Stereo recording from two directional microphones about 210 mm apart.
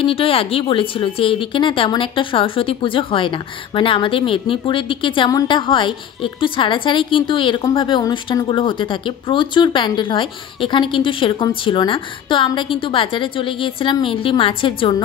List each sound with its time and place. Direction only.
0.0 s speech: 25° left (ahead or behind)